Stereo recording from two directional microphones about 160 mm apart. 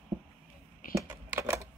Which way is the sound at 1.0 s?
15° right (ahead or behind).